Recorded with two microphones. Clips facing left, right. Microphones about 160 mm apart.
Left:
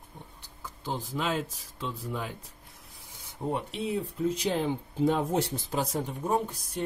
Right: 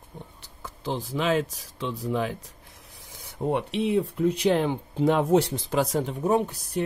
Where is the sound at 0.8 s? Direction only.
80° right.